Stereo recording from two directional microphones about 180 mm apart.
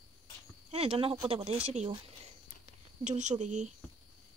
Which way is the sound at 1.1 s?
30° right (ahead or behind).